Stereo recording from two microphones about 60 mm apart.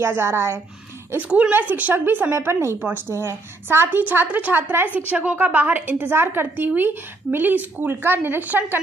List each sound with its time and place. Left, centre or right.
0.0 s a woman's voice: right
1.5 s a woman's voice: right
2.3 s a woman's voice: right